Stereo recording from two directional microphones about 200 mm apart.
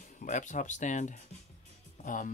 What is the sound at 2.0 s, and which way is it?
Music, 40° left (ahead or behind).